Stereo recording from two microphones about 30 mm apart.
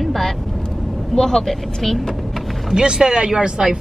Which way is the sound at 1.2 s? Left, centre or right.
Centre.